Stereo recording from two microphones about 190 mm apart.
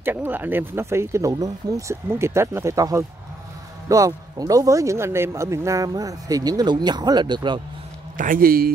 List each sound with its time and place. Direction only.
0.0 s speech: 10° right (ahead or behind)
8.2 s speech: 50° right (ahead or behind)